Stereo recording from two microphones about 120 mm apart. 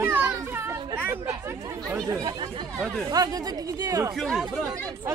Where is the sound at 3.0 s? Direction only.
30° right (ahead or behind).